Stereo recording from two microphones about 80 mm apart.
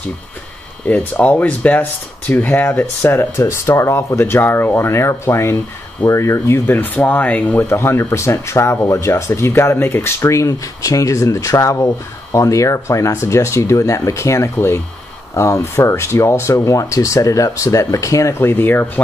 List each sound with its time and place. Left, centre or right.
0.8 s speech: centre
7.6 s speech: left